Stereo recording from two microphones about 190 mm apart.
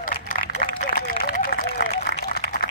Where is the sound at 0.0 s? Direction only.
45° left (ahead or behind).